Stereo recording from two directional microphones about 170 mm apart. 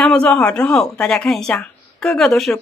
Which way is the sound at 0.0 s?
5° left (ahead or behind).